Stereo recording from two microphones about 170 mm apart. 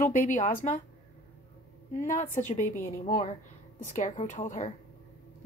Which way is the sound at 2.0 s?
45° left (ahead or behind).